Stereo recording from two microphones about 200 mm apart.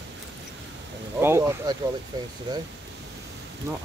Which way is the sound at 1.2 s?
10° right (ahead or behind).